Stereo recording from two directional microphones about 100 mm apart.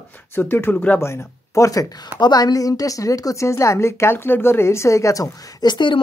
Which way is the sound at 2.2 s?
40° left (ahead or behind).